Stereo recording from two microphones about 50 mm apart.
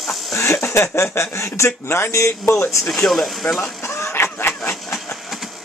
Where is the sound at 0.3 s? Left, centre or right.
Left.